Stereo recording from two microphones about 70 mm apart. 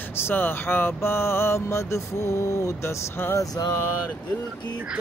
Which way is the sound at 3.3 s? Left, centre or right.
Left.